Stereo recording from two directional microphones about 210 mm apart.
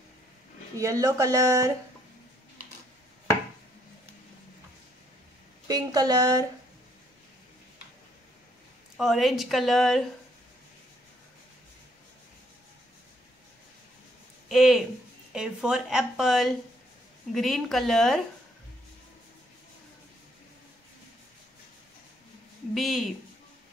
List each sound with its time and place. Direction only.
0.7 s speech: 15° right (ahead or behind)
5.7 s speech: 15° right (ahead or behind)
8.9 s speech: centre (ahead or behind)
14.5 s speech: centre (ahead or behind)
22.8 s speech: centre (ahead or behind)